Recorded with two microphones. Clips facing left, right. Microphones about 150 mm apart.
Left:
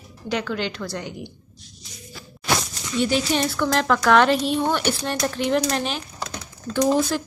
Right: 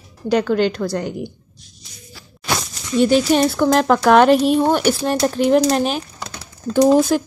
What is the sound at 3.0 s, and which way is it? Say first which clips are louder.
Speech: right 8 dB; 40° right (ahead or behind).